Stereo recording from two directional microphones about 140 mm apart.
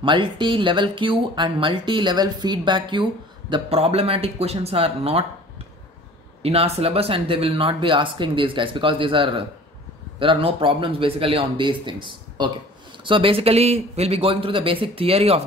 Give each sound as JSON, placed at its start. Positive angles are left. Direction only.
{"t": 0.0, "sound": "speech", "side_deg": -35}
{"t": 6.4, "sound": "a man's voice", "side_deg": -45}